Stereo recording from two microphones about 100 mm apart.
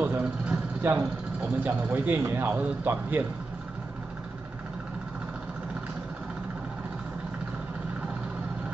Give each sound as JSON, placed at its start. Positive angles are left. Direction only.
{"t": 0.0, "sound": "vehicle", "side_deg": -15}
{"t": 1.4, "sound": "a man's voice", "side_deg": -15}